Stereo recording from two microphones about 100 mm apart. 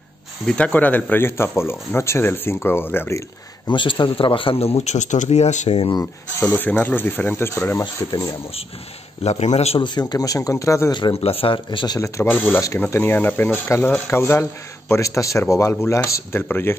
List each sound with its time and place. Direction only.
0.5 s speech: 15° left (ahead or behind)
3.6 s a man's voice: 55° left (ahead or behind); by 5.9 s 90° left
6.4 s speech: 20° left (ahead or behind)
9.2 s a man's voice: 90° left
9.8 s speech: 45° left (ahead or behind)
10.9 s speech: 50° left (ahead or behind)
11.1 s speech: 80° left; by 12.0 s 50° left (ahead or behind)
12.3 s speech: 20° left (ahead or behind)